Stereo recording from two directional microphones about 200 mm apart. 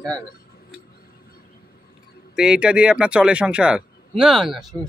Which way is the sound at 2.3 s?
5° right (ahead or behind).